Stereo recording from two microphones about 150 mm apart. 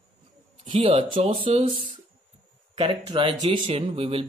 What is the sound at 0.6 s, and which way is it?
Speech, 35° right (ahead or behind).